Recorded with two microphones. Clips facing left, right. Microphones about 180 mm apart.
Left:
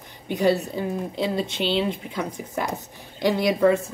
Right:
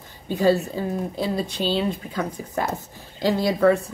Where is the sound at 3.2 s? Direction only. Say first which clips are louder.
Even; 20° left (ahead or behind).